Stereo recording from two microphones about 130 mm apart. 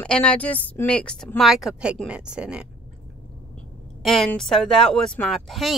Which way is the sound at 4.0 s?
5° left (ahead or behind).